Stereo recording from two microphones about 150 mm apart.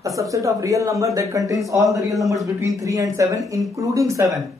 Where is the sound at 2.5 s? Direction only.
20° right (ahead or behind).